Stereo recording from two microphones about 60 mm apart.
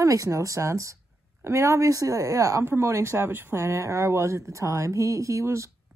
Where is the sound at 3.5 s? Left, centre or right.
Right.